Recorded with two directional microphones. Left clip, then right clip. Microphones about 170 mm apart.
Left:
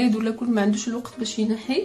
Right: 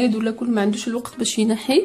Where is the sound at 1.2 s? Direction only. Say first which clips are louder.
Right 6 dB; 45° right (ahead or behind).